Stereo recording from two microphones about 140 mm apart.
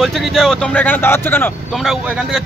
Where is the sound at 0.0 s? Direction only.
Centre (ahead or behind).